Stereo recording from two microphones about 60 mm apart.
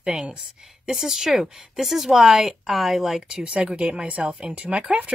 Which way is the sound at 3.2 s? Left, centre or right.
Centre.